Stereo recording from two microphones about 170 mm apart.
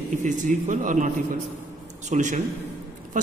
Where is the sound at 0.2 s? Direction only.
50° right (ahead or behind).